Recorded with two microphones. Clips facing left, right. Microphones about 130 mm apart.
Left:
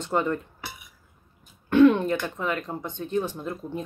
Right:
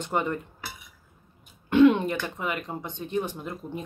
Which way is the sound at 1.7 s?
15° right (ahead or behind).